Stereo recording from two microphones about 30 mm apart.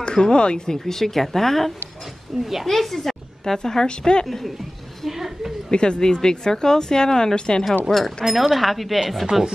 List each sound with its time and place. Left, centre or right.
0.0 s speech: left
0.8 s a woman's voice: centre
5.1 s a sound: centre
5.7 s speech: left
8.3 s speech: centre